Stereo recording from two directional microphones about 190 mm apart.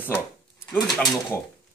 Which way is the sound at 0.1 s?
10° left (ahead or behind).